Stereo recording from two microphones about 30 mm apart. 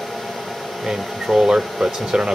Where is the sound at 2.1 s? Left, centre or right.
Right.